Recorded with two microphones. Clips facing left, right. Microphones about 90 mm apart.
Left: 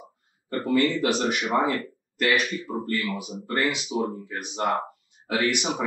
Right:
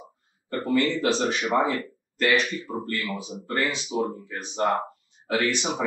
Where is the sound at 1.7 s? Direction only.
10° left (ahead or behind).